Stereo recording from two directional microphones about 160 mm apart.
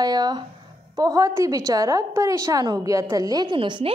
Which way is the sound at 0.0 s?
25° right (ahead or behind).